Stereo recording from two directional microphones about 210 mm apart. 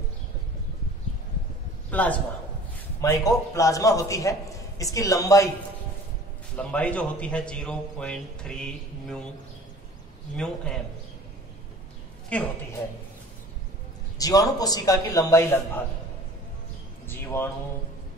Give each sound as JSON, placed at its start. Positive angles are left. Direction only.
{"t": 1.9, "sound": "a man's voice", "side_deg": 5}
{"t": 6.5, "sound": "a man's voice", "side_deg": 5}
{"t": 10.3, "sound": "a man's voice", "side_deg": 5}
{"t": 12.3, "sound": "a man's voice", "side_deg": 5}
{"t": 14.1, "sound": "a man's voice", "side_deg": 15}
{"t": 17.1, "sound": "a man's voice", "side_deg": 10}